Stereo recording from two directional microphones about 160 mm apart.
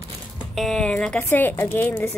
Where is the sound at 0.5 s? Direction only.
Centre (ahead or behind).